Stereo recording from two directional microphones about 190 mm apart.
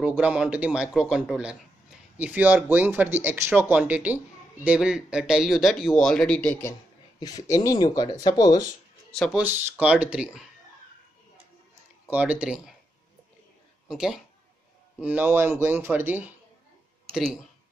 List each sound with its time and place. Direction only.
0.0 s speech: 5° right (ahead or behind)
7.2 s speech: 20° left (ahead or behind)
9.1 s speech: 5° left (ahead or behind)
9.4 s speech: 10° right (ahead or behind)
12.1 s speech: 10° right (ahead or behind)
13.8 s speech: centre (ahead or behind)